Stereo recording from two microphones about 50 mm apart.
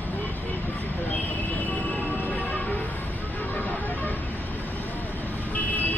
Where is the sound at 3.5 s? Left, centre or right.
Left.